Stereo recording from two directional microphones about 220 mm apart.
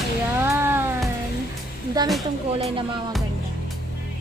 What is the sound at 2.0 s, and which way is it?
Speech, 15° right (ahead or behind).